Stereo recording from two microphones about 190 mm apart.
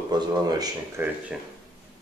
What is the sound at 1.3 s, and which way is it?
Speech, 5° right (ahead or behind).